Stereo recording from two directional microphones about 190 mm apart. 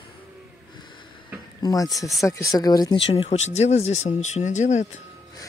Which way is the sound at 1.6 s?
20° left (ahead or behind).